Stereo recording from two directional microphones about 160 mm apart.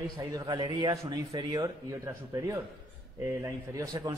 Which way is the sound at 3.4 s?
20° right (ahead or behind).